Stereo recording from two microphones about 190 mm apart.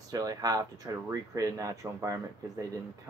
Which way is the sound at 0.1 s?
20° right (ahead or behind).